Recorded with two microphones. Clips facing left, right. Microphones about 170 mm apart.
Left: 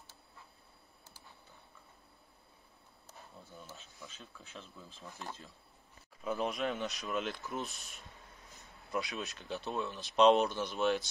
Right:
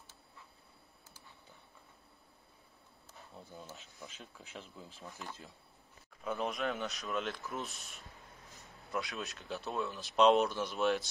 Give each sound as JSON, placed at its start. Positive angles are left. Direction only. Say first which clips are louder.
{"t": 3.5, "sound": "speech", "louder": "right 1 dB", "side_deg": -20}
{"t": 6.2, "sound": "speech", "louder": "left 1 dB", "side_deg": 0}